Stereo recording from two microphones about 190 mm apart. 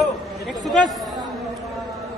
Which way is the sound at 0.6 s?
Centre (ahead or behind).